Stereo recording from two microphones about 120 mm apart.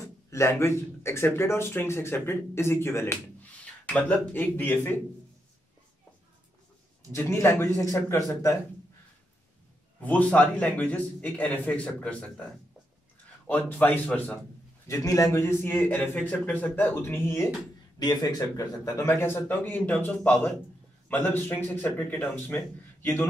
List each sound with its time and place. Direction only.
0.3 s a man's voice: 20° left (ahead or behind)
7.1 s speech: 25° left (ahead or behind)
9.9 s a man's voice: 10° left (ahead or behind)
13.5 s a man's voice: 15° left (ahead or behind)
14.9 s speech: 30° left (ahead or behind)
17.9 s a man's voice: 35° left (ahead or behind); by 22.6 s 15° left (ahead or behind)